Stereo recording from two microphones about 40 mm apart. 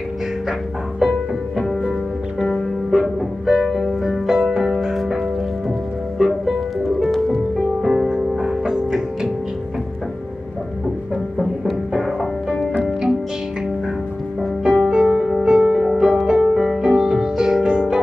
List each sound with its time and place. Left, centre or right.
0.5 s music: centre
2.9 s music: centre
6.8 s music: centre
7.8 s music: centre
11.3 s music: centre
14.6 s music: centre